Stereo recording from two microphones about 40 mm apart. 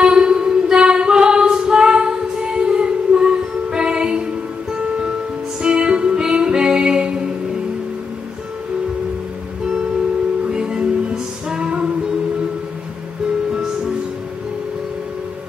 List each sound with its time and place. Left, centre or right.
0.0 s a sound: right
0.7 s female singing: right
2.5 s music: right
5.6 s music: right
10.5 s music: centre